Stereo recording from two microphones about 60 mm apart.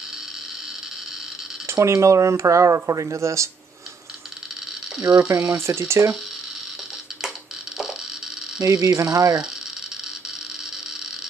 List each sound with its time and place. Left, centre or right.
1.7 s speech: right
5.1 s speech: right
5.5 s speech: right
7.2 s a sound: centre
8.6 s speech: right